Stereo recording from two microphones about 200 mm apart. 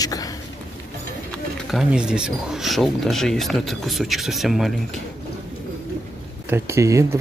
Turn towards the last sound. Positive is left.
turn(degrees=-15)  # may be behind; listen again after turning